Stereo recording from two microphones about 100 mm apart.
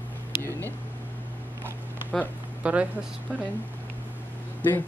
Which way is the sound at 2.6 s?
10° right (ahead or behind).